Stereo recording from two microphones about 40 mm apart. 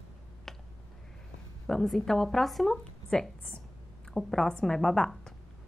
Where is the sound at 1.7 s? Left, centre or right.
Centre.